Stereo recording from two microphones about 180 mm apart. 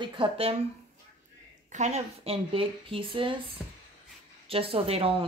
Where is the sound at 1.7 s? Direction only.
40° right (ahead or behind).